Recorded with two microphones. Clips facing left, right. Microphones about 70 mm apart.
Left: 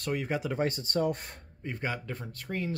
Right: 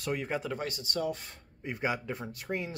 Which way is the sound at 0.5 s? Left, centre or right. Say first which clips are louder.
Left 5 dB; left.